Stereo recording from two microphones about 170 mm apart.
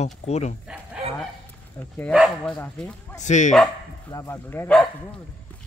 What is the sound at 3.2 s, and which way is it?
Speech, 45° left (ahead or behind).